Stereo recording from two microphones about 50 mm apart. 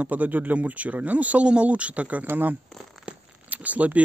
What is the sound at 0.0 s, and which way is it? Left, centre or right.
Speech, right.